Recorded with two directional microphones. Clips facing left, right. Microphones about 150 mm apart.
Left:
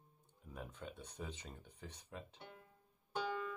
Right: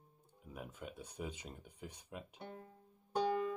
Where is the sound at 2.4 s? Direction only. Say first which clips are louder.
Right 7 dB; 45° right (ahead or behind).